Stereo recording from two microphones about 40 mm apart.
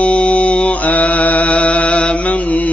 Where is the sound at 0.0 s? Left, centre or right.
Left.